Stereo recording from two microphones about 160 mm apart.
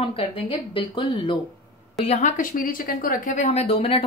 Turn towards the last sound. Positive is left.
turn(degrees=40)  # may be behind; listen again after turning